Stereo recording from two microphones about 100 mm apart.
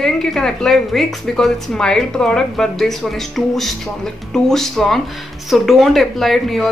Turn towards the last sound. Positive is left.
turn(degrees=5)  # may be behind; listen again after turning